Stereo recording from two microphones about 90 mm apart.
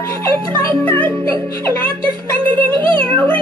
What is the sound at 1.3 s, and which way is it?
Music, 25° left (ahead or behind).